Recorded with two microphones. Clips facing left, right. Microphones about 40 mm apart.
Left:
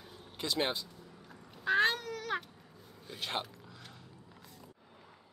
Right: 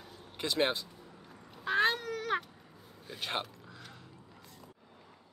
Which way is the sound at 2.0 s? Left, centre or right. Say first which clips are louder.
Right 3 dB; centre.